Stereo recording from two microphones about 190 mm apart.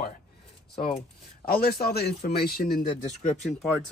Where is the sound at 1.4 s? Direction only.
50° left (ahead or behind).